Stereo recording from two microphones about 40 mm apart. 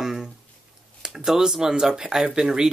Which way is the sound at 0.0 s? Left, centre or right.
Centre.